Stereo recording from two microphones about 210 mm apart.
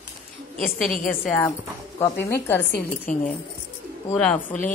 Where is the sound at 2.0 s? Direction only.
10° left (ahead or behind).